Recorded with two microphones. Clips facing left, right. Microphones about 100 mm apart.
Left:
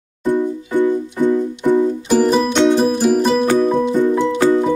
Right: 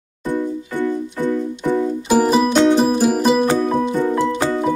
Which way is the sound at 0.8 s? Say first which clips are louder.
Left 5 dB; 20° left (ahead or behind).